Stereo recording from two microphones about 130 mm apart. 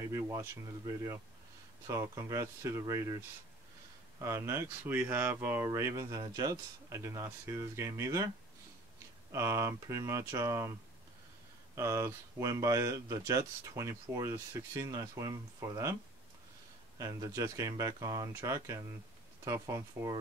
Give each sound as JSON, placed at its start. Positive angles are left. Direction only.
{"t": 0.0, "sound": "speech", "side_deg": -25}
{"t": 4.2, "sound": "speech", "side_deg": -20}
{"t": 9.3, "sound": "speech", "side_deg": -25}
{"t": 11.7, "sound": "speech", "side_deg": -25}
{"t": 17.0, "sound": "speech", "side_deg": -25}